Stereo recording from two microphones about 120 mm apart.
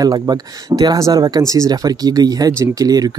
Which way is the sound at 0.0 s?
35° right (ahead or behind).